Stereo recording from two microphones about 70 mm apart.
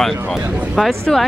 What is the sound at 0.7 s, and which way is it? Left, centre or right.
Speech, centre.